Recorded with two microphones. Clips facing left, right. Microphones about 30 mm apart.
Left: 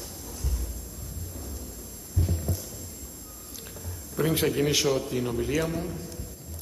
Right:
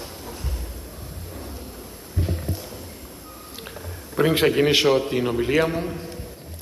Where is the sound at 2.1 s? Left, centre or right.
Right.